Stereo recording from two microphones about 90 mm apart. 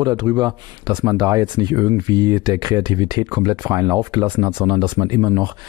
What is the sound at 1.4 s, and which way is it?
Speech, 55° right (ahead or behind).